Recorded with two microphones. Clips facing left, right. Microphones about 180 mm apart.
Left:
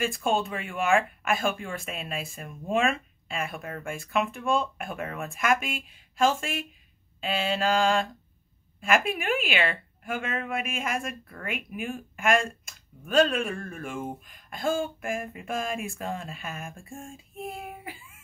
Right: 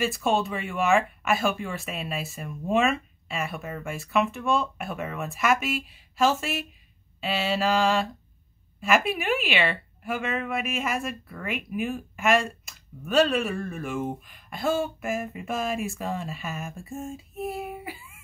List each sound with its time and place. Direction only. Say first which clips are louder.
0.0 s speech: right 2 dB; centre (ahead or behind)